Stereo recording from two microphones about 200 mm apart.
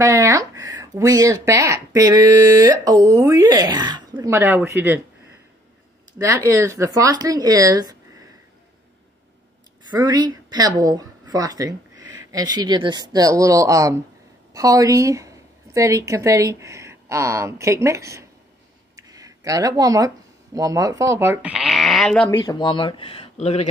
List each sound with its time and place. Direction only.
0.0 s speech: 15° right (ahead or behind)
6.4 s speech: 15° right (ahead or behind)
9.8 s a woman's voice: 20° right (ahead or behind)
18.9 s a sound: 15° right (ahead or behind)
20.5 s speech: 15° right (ahead or behind); by 22.3 s 5° left (ahead or behind)
22.4 s speech: 20° left (ahead or behind)